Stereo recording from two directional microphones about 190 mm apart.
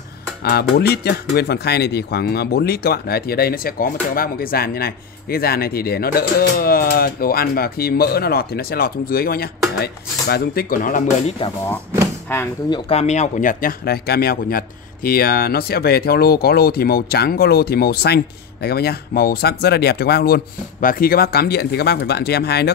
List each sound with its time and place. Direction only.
0.4 s speech: 55° left (ahead or behind); by 11.5 s 40° left (ahead or behind)
12.6 s speech: 25° left (ahead or behind); by 22.7 s 60° left (ahead or behind)